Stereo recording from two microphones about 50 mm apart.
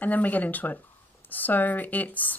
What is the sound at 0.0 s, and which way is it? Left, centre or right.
Speech, left.